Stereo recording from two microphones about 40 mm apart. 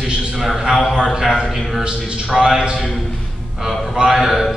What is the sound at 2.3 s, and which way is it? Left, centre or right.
Speech, centre.